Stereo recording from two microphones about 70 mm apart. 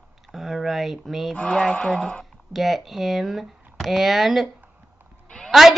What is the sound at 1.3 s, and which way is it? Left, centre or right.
Speech, centre.